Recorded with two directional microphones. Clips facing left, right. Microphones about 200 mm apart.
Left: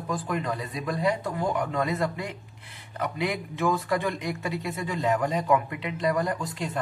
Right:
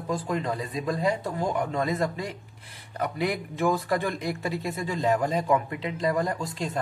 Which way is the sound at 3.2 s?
40° right (ahead or behind).